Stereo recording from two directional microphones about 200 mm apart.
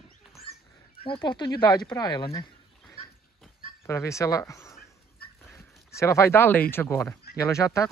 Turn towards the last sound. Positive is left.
turn(degrees=15)  # may be behind; listen again after turning